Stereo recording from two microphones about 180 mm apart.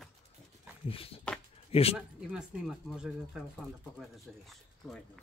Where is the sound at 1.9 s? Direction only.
Centre (ahead or behind).